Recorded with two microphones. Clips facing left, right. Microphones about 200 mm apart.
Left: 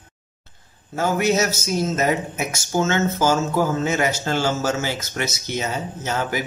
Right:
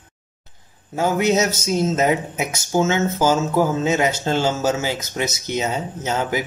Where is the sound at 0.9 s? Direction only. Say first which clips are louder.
Right 2 dB; 15° right (ahead or behind).